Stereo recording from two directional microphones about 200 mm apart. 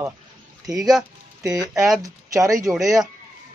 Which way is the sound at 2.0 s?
15° right (ahead or behind).